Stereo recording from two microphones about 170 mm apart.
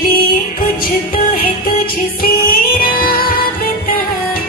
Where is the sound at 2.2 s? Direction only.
60° left (ahead or behind).